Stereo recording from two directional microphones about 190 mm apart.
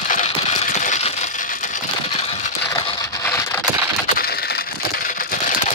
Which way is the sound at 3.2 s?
15° left (ahead or behind).